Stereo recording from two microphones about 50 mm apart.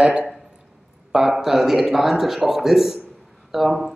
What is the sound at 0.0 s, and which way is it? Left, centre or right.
Speech, centre.